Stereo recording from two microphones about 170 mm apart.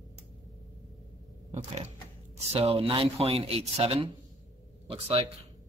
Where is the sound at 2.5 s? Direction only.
35° right (ahead or behind).